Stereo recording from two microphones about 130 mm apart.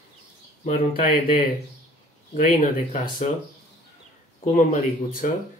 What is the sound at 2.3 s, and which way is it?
Speech, 70° left (ahead or behind).